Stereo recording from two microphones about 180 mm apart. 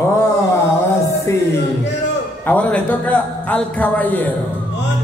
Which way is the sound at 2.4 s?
5° left (ahead or behind).